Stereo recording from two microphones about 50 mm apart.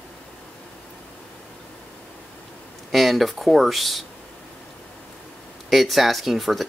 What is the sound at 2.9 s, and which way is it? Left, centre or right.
Speech, centre.